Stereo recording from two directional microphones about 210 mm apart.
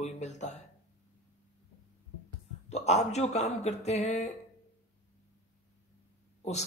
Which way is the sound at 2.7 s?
30° left (ahead or behind).